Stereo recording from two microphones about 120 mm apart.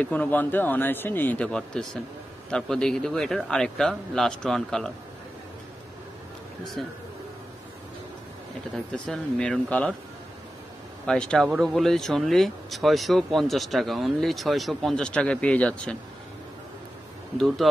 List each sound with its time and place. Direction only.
0.0 s a man's voice: 15° left (ahead or behind)
8.7 s a man's voice: 5° left (ahead or behind)
11.1 s speech: 5° left (ahead or behind)
17.4 s speech: centre (ahead or behind)